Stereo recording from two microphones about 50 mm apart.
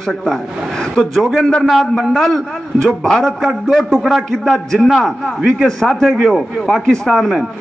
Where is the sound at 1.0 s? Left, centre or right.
Centre.